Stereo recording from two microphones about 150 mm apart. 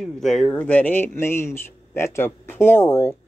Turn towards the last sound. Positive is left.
turn(degrees=15)  # may be behind; listen again after turning